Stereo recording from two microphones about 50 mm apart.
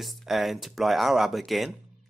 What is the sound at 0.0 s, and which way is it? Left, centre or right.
Speech, centre.